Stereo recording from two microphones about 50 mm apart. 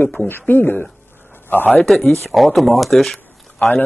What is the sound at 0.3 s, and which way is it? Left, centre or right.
Speech, left.